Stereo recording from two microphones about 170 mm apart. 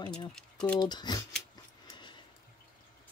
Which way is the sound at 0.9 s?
25° left (ahead or behind).